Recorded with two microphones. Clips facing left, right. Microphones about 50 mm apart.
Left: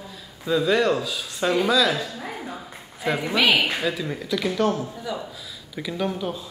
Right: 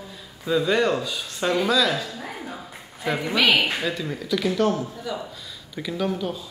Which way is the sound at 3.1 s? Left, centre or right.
Centre.